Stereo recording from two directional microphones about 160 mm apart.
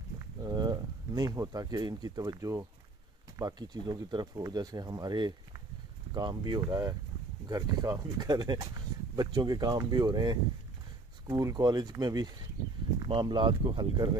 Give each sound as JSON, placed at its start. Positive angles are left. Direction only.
{"t": 0.4, "sound": "speech", "side_deg": -25}